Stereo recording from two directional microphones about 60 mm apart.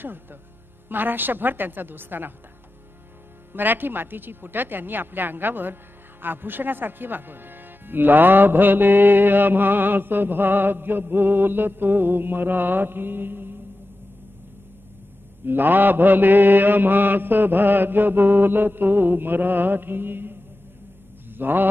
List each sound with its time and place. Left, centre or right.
0.0 s speech: right
3.5 s speech: right
15.4 s speech: right
21.3 s mantra: right